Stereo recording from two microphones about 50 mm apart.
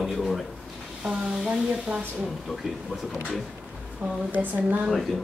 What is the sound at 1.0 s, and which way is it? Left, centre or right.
Sizzle, centre.